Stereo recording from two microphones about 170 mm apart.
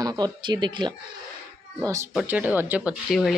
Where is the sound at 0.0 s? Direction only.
25° right (ahead or behind).